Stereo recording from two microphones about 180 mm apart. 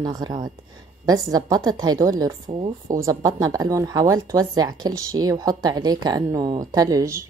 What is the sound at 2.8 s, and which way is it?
Speech, 20° right (ahead or behind).